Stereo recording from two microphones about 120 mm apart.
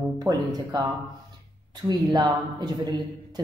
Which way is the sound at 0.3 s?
25° right (ahead or behind).